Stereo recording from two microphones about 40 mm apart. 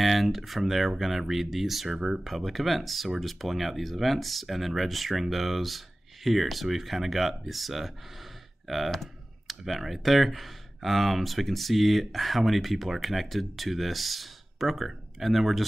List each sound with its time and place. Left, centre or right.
0.0 s speech: centre
2.0 s speech: centre
2.2 s speech: centre